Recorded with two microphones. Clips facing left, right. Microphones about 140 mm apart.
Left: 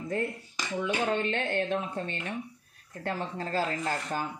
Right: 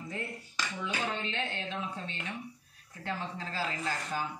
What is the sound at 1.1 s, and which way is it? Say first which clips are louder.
Speech: left 8 dB; 50° left (ahead or behind).